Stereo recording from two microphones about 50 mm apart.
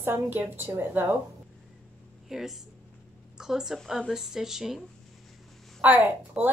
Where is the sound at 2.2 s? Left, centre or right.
Centre.